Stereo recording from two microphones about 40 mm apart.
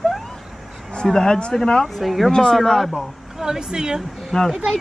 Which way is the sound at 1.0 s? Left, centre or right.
Centre.